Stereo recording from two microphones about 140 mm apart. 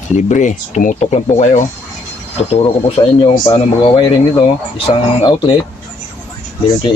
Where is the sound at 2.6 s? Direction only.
40° left (ahead or behind).